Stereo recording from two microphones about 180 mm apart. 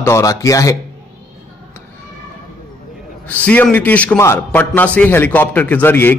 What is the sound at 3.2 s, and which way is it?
A man's voice, 10° left (ahead or behind).